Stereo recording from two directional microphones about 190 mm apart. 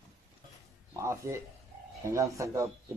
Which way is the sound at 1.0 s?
15° right (ahead or behind).